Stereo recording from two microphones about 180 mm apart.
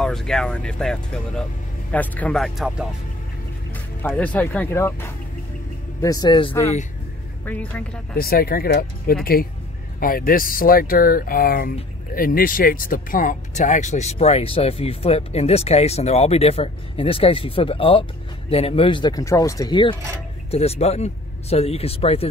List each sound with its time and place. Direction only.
0.0 s speech: centre (ahead or behind)
4.1 s speech: 10° left (ahead or behind); by 6.5 s 25° left (ahead or behind)
7.4 s speech: 10° left (ahead or behind)
8.2 s speech: 55° left (ahead or behind); by 22.3 s 35° left (ahead or behind)